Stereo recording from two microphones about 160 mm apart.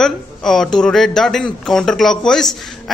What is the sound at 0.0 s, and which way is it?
A man's voice, centre (ahead or behind).